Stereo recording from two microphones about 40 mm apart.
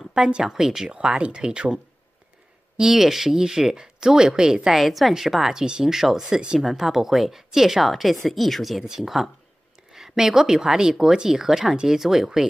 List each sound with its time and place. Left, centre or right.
0.1 s speech: centre
0.9 s speech: right
2.8 s speech: centre
4.7 s speech: centre